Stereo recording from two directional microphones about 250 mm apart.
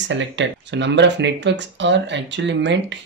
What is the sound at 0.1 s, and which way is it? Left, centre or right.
Speech, right.